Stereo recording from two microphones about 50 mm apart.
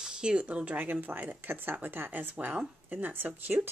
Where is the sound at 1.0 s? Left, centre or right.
Right.